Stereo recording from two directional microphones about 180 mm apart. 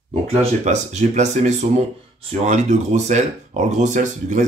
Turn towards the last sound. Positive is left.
turn(degrees=-45)  # may be behind; listen again after turning